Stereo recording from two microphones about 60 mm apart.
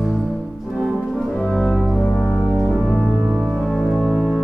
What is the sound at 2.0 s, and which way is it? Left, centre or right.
Music, centre.